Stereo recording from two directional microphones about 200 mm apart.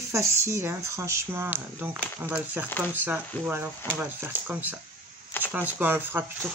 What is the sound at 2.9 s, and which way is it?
Speech, 10° right (ahead or behind).